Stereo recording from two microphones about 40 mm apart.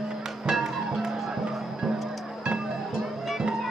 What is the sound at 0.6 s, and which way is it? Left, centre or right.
Music, centre.